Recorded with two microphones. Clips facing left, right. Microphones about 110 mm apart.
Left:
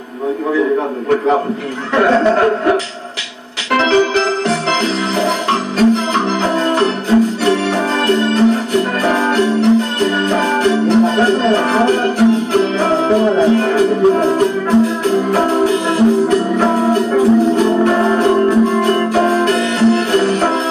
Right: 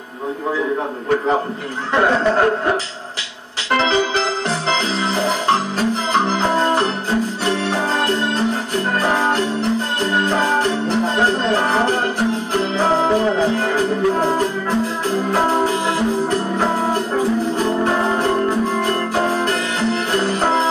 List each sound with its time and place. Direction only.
3.7 s music: 60° left (ahead or behind)
18.5 s music: 60° left (ahead or behind)